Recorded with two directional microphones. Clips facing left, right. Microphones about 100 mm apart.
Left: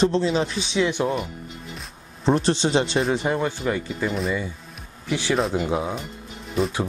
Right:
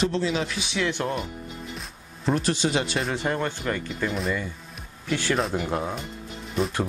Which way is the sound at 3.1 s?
15° left (ahead or behind).